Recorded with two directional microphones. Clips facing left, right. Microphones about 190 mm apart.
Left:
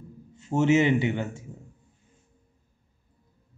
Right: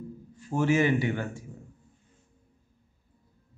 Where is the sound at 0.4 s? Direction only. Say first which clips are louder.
Left 3 dB; 25° left (ahead or behind).